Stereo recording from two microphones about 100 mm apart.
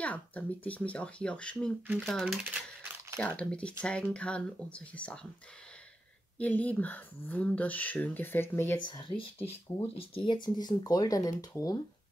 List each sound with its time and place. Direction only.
0.0 s speech: 15° left (ahead or behind)
2.4 s typing: 15° right (ahead or behind)
3.2 s speech: 10° left (ahead or behind)
6.3 s speech: 15° left (ahead or behind)
8.8 s speech: 50° left (ahead or behind)